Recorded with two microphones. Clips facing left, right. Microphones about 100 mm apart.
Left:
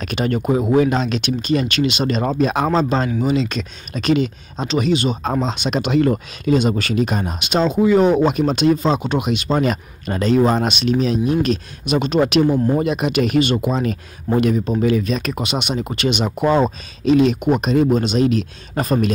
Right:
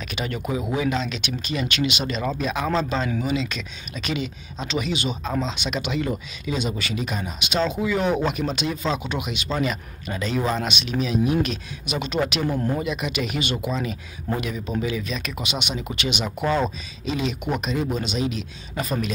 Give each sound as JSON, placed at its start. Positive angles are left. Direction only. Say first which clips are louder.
{"t": 0.0, "sound": "a man's voice", "louder": "left 9 dB", "side_deg": 45}
{"t": 12.4, "sound": "speech", "louder": "left 7 dB", "side_deg": 20}
{"t": 12.7, "sound": "a man's voice", "louder": "left 8 dB", "side_deg": 45}
{"t": 17.0, "sound": "speech", "louder": "left 12 dB", "side_deg": 55}